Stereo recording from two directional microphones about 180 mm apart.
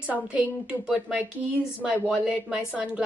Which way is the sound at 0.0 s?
5° right (ahead or behind).